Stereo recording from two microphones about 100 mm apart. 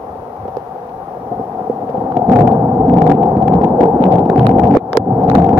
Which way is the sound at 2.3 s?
20° right (ahead or behind).